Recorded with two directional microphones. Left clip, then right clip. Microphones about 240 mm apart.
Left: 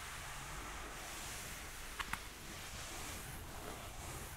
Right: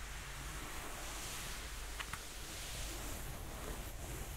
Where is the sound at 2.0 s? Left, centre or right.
Left.